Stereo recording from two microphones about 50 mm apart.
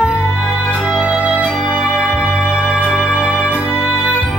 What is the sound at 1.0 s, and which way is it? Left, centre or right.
Music, right.